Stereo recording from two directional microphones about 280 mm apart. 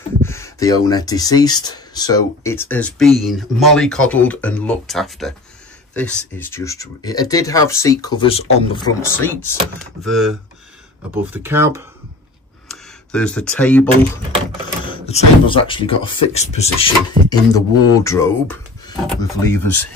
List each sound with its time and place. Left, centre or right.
0.2 s speech: centre
12.6 s speech: centre
14.9 s speech: centre
17.3 s speech: centre